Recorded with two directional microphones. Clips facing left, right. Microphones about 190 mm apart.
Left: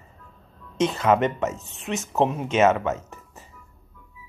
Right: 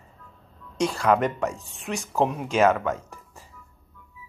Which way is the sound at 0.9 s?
5° left (ahead or behind).